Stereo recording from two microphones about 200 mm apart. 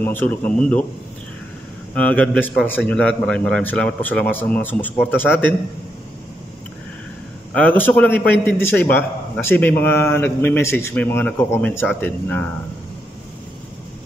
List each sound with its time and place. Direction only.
0.0 s a man's voice: 10° left (ahead or behind)
2.0 s a man's voice: 5° left (ahead or behind)
7.5 s a man's voice: 10° left (ahead or behind)